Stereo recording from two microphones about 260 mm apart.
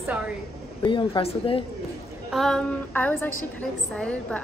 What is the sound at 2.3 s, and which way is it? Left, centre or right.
A woman's voice, centre.